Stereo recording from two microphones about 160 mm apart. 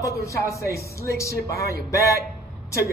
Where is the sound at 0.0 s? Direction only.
20° left (ahead or behind).